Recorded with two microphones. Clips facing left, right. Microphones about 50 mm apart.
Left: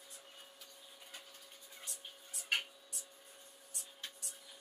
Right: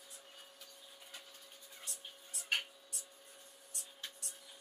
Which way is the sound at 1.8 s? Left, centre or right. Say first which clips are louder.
Even; centre.